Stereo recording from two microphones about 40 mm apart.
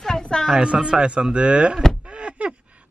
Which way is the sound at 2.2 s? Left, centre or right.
Right.